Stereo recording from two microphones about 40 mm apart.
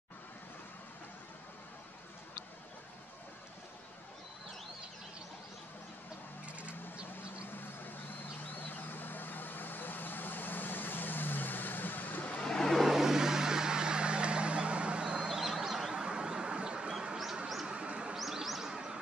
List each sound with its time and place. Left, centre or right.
6.4 s vehicle: right
7.5 s vehicle: left
12.4 s vehicle: centre
12.7 s vehicle: centre; by 15.3 s right
15.3 s a sound: centre
17.6 s bird: right
18.1 s bird: centre